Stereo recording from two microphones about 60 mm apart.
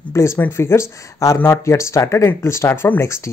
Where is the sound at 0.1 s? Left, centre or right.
Left.